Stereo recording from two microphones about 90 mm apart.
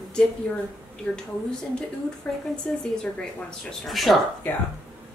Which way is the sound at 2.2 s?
15° left (ahead or behind).